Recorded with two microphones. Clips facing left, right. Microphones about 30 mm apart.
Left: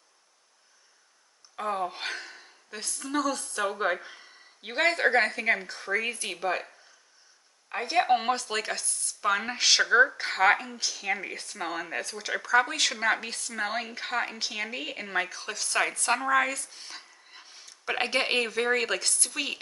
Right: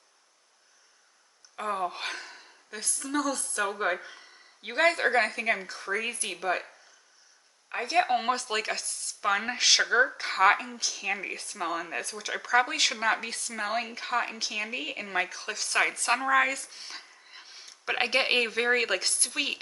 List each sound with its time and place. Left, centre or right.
1.6 s speech: centre
8.0 s speech: centre
12.4 s speech: centre
17.5 s a sound: right
17.8 s speech: centre